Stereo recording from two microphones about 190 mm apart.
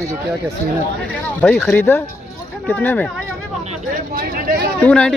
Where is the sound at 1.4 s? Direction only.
5° left (ahead or behind).